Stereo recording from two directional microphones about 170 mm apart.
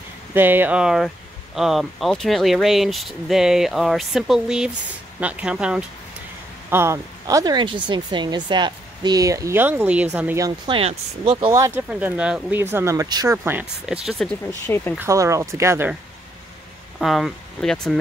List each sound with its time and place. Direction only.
0.3 s speech: 10° right (ahead or behind)
10.4 s speech: 30° right (ahead or behind)
11.6 s speech: 10° right (ahead or behind)
14.0 s speech: centre (ahead or behind)
15.0 s speech: 15° right (ahead or behind)
17.0 s speech: centre (ahead or behind)